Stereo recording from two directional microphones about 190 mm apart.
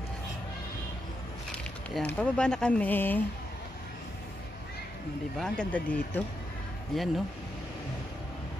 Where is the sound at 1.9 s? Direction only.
5° left (ahead or behind).